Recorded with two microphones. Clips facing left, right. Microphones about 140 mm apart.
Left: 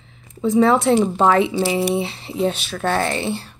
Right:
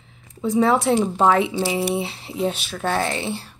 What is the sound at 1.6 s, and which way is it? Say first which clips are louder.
Speech: left 3 dB; 70° left (ahead or behind).